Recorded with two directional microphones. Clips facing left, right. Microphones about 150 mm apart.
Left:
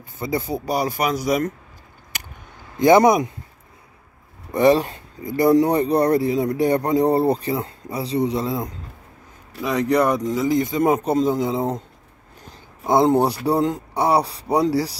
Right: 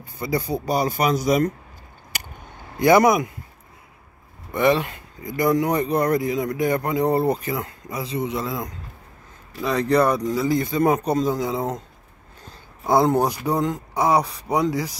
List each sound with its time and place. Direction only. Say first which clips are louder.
0.2 s speech: even; 20° left (ahead or behind)
0.6 s speech: right 1 dB; 5° left (ahead or behind)
2.8 s speech: left 2 dB; 25° left (ahead or behind)
4.5 s speech: left 4 dB; 35° left (ahead or behind)
9.6 s speech: even; 15° left (ahead or behind)
12.4 s a sound: left 1 dB; 20° left (ahead or behind)
13.5 s speech: left 3 dB; 30° left (ahead or behind)